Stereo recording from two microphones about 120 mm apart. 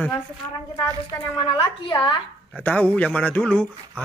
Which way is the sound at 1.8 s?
40° left (ahead or behind).